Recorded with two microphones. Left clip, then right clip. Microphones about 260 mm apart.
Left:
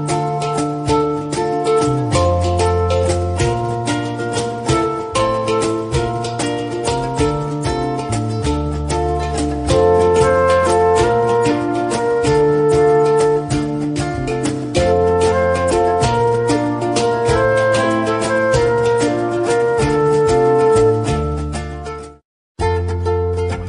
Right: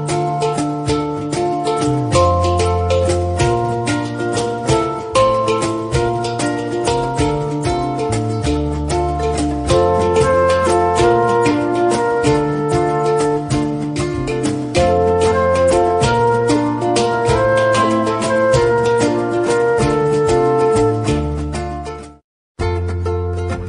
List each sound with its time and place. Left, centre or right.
0.1 s music: centre
5.1 s music: centre
8.9 s music: centre